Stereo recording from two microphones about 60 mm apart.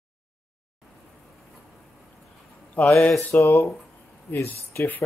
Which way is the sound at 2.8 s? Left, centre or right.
Left.